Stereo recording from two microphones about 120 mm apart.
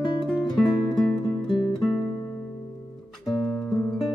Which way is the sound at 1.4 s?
45° left (ahead or behind).